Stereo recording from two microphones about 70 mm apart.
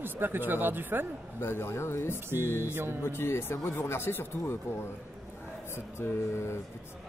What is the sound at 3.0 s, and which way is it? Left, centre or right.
Speech, left.